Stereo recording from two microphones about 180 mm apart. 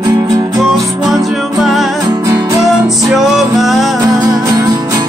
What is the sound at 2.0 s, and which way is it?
Music, 20° right (ahead or behind).